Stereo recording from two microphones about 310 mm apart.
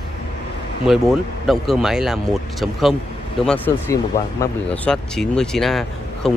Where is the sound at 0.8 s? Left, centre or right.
Centre.